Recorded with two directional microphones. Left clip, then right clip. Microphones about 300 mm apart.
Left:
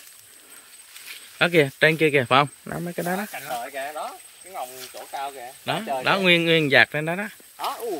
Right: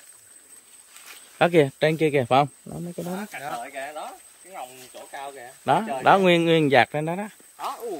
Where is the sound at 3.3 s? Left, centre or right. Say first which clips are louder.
Left 2 dB; left.